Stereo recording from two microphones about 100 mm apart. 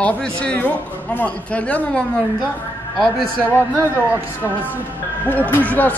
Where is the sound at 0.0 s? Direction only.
15° left (ahead or behind).